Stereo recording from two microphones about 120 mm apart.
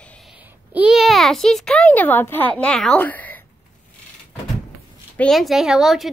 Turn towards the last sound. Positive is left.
turn(degrees=0)  # may be behind; listen again after turning